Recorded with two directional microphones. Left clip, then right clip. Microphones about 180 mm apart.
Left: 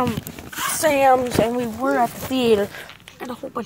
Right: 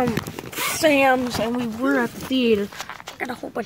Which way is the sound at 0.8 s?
5° left (ahead or behind).